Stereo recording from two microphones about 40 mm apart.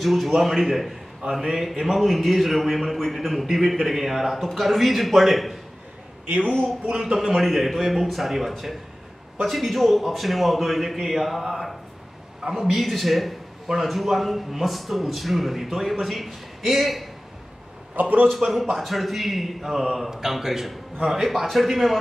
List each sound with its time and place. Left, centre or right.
0.0 s a man's voice: centre
6.6 s speech: right
7.2 s a man's voice: centre
18.0 s a man's voice: right
18.3 s a man's voice: centre